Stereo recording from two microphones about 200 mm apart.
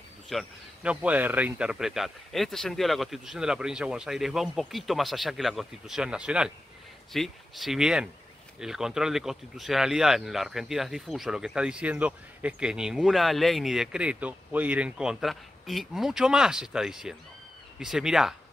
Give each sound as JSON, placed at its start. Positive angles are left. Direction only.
{"t": 0.3, "sound": "speech", "side_deg": -5}